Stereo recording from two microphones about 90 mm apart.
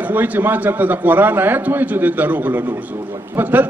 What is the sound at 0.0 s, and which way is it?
A man's voice, 20° right (ahead or behind).